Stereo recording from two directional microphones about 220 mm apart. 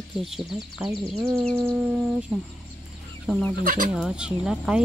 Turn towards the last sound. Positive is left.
turn(degrees=-5)  # may be behind; listen again after turning